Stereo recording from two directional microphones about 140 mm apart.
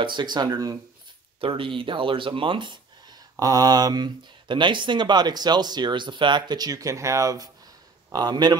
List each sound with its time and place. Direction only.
0.0 s speech: 35° right (ahead or behind)
1.4 s a man's voice: 40° right (ahead or behind)